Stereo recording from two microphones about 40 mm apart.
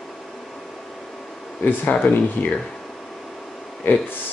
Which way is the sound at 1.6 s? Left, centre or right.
Left.